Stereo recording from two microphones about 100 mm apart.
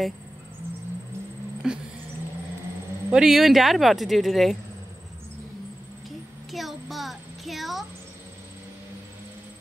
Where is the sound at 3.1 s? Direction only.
5° right (ahead or behind).